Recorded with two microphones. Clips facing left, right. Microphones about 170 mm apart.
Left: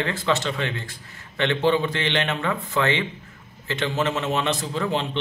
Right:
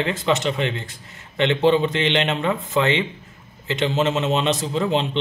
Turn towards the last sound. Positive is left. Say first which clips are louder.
# right 4 dB
turn(degrees=-20)  # may be behind; listen again after turning